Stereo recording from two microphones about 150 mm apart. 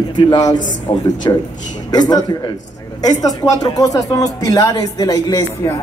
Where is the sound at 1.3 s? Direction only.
30° left (ahead or behind).